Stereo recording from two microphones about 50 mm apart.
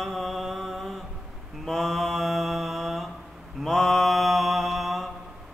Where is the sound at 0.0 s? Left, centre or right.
Centre.